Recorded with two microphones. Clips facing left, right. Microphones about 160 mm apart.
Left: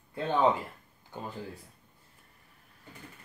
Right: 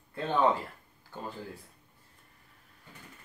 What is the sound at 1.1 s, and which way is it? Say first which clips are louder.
Speech: left 1 dB; 15° left (ahead or behind).